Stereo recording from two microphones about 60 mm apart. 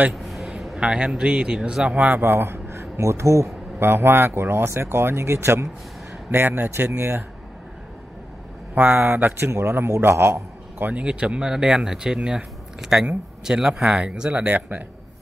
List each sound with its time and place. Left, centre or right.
0.1 s a sound: centre
0.7 s speech: centre
2.0 s speech: right
3.8 s speech: right
6.3 s a man's voice: right
8.7 s a man's voice: right
10.9 s speech: centre